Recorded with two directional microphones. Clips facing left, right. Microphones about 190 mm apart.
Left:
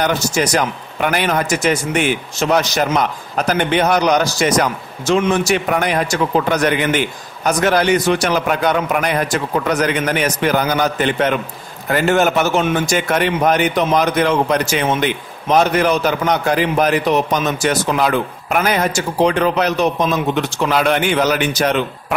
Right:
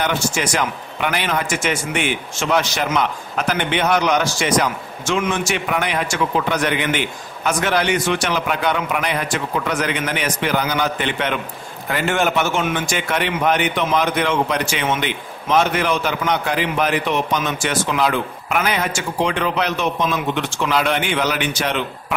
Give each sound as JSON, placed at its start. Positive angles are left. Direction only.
{"t": 0.0, "sound": "a man's voice", "side_deg": 40}